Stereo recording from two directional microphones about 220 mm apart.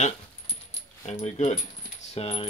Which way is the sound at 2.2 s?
25° left (ahead or behind).